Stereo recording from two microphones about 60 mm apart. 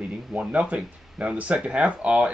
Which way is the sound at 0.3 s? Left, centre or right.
Right.